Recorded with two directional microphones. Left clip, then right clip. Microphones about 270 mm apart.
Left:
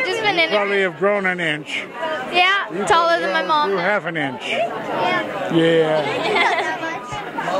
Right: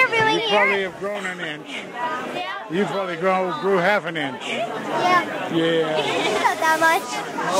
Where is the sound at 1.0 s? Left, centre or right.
Left.